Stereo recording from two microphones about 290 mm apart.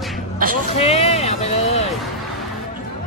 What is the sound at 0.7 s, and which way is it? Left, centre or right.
Speech, left.